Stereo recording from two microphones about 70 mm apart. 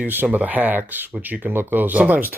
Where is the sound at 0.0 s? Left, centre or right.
Right.